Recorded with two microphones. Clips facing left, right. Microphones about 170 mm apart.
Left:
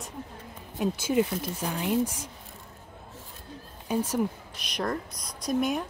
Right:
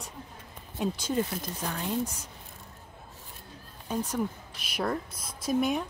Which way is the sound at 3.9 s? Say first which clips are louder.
Left 4 dB; 10° left (ahead or behind).